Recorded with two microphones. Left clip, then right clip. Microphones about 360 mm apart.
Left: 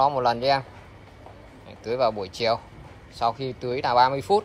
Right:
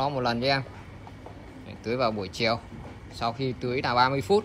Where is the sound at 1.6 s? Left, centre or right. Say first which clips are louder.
Left 3 dB; centre.